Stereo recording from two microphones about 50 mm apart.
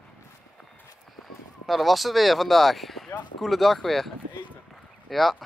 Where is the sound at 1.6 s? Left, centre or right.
Centre.